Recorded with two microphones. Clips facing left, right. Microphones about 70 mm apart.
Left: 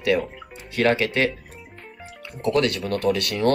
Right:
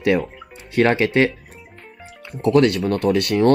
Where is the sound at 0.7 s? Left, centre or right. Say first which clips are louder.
Right 4 dB; right.